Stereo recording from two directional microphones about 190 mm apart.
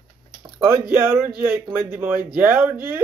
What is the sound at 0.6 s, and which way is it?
Speech, 10° right (ahead or behind).